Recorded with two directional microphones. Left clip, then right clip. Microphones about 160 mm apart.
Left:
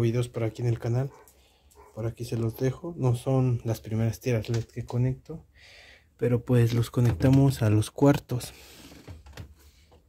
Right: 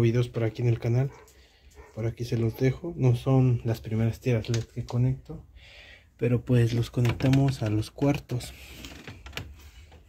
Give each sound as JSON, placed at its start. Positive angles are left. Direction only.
{"t": 0.0, "sound": "speech", "side_deg": 5}
{"t": 5.7, "sound": "a sound", "side_deg": 10}
{"t": 6.5, "sound": "speech", "side_deg": 30}